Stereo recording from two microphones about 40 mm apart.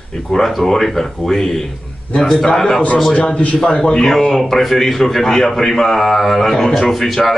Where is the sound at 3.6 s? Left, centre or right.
Centre.